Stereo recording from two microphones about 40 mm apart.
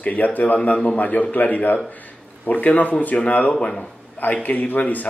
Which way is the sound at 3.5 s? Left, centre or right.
Left.